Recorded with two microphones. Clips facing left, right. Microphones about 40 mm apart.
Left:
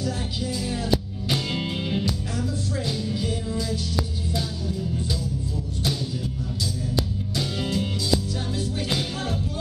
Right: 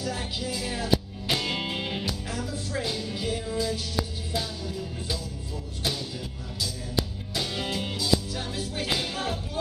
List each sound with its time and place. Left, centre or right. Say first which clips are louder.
0.0 s music: left 3 dB; centre
7.3 s music: left 3 dB; centre